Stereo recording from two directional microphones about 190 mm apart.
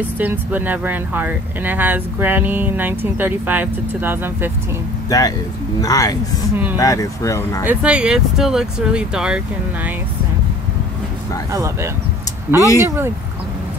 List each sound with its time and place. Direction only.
0.2 s speech: 10° right (ahead or behind)
5.1 s speech: 20° left (ahead or behind)
6.5 s speech: 10° right (ahead or behind)
6.8 s speech: 15° left (ahead or behind)
7.6 s speech: 5° right (ahead or behind)
11.5 s speech: 15° right (ahead or behind)